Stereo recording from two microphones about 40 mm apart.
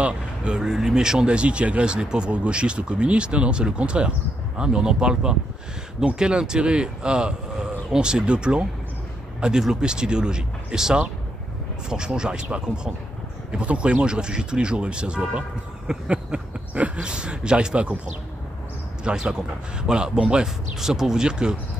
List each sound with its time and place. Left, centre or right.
0.0 s vehicle: right
0.6 s speech: centre
15.9 s a sound: right
17.0 s speech: right
19.1 s speech: right
19.9 s speech: centre
20.8 s speech: centre